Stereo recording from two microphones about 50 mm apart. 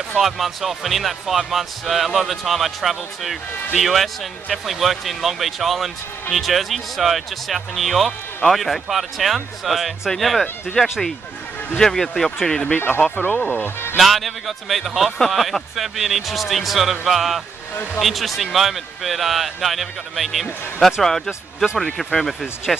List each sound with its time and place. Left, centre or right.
0.2 s speech: centre
13.1 s speech: left
13.5 s speech: left
13.9 s speech: centre